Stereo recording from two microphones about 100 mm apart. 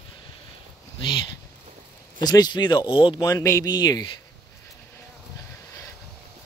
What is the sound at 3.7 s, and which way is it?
Speech, 45° left (ahead or behind).